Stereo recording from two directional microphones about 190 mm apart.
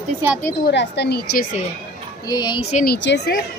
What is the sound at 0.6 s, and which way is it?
Speech, 60° left (ahead or behind).